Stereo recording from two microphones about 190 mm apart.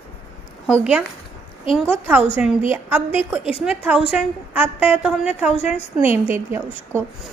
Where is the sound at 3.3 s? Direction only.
5° right (ahead or behind).